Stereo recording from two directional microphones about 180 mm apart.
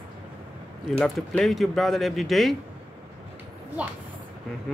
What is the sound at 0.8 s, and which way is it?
Speech, centre (ahead or behind).